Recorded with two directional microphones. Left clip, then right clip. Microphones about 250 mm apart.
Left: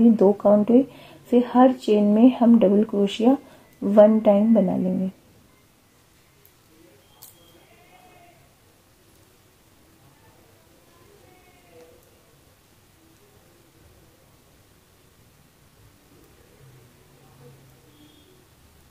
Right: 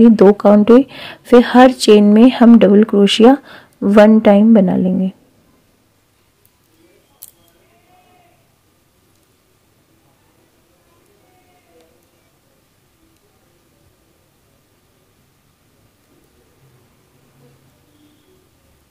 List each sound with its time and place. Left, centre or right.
0.1 s speech: right